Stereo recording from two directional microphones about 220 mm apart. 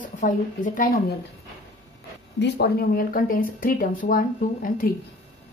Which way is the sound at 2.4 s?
45° left (ahead or behind).